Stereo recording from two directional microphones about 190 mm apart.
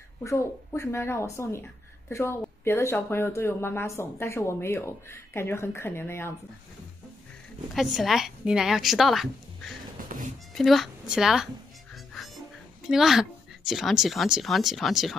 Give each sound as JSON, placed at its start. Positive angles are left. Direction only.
{"t": 0.2, "sound": "speech", "side_deg": 15}
{"t": 7.7, "sound": "a woman's voice", "side_deg": 0}
{"t": 10.1, "sound": "speech", "side_deg": -45}
{"t": 10.5, "sound": "a woman's voice", "side_deg": 0}
{"t": 11.9, "sound": "music", "side_deg": 0}
{"t": 12.8, "sound": "a woman's voice", "side_deg": 0}